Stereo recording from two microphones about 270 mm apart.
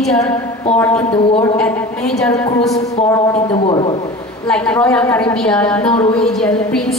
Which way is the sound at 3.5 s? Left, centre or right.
Centre.